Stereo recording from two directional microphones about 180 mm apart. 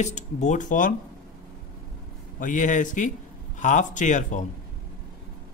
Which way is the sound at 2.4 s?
45° left (ahead or behind).